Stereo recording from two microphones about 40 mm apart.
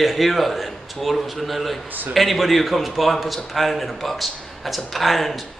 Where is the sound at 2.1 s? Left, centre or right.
Centre.